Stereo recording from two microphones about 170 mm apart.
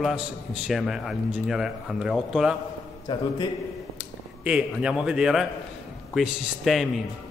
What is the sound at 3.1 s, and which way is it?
Speech, 30° left (ahead or behind).